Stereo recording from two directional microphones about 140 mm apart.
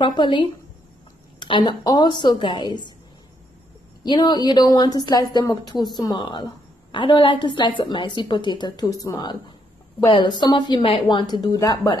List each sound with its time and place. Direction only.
0.0 s a woman's voice: 35° left (ahead or behind)
4.0 s a woman's voice: 30° left (ahead or behind)